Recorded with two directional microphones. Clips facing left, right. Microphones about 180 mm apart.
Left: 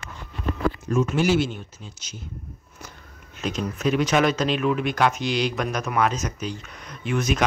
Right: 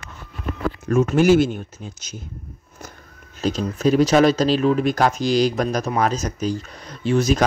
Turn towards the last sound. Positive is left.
turn(degrees=-35)  # may be behind; listen again after turning